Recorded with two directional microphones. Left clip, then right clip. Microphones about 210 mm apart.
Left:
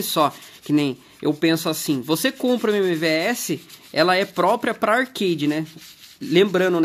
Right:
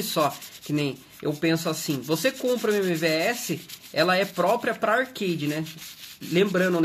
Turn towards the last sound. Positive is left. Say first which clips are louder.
# left 5 dB
turn(degrees=50)  # may be behind; listen again after turning